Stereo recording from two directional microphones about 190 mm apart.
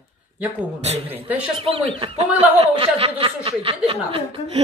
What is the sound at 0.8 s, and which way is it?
Speech, 35° right (ahead or behind).